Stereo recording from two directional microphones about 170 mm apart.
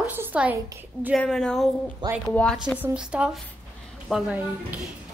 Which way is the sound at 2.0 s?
25° right (ahead or behind).